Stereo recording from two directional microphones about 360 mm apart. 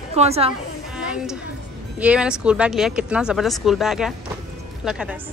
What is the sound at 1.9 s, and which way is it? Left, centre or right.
Speech, centre.